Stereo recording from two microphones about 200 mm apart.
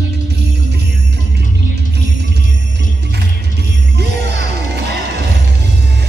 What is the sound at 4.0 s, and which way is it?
Music, 55° right (ahead or behind).